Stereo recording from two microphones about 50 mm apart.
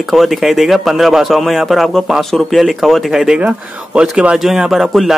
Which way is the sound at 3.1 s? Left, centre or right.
Centre.